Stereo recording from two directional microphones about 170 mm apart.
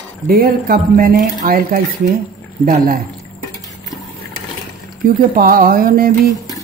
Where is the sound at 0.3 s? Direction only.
60° right (ahead or behind).